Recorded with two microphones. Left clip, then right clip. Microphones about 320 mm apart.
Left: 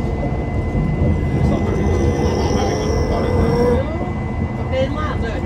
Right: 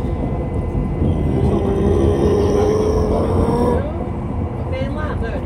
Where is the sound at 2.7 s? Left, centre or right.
Right.